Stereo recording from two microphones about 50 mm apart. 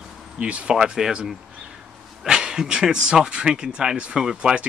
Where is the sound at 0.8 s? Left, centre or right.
Centre.